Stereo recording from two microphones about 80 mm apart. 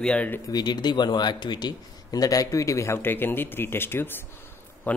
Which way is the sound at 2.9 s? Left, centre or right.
Left.